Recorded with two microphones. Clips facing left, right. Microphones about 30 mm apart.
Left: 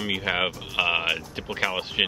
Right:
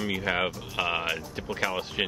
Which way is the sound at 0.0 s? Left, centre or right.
Left.